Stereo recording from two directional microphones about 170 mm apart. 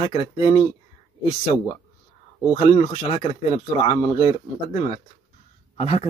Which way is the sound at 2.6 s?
30° left (ahead or behind).